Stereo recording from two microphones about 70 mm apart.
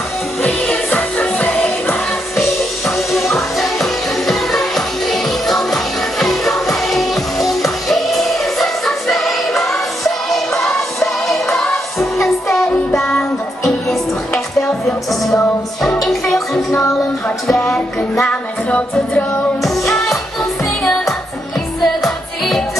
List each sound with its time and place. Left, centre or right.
0.4 s music: left
3.1 s music: centre
17.5 s music: centre
18.3 s music: left
21.8 s music: centre